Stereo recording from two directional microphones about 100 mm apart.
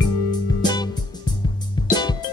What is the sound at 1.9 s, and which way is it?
Music, 45° left (ahead or behind).